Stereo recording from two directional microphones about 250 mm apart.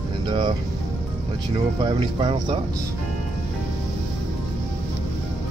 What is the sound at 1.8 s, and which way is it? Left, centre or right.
Speech, centre.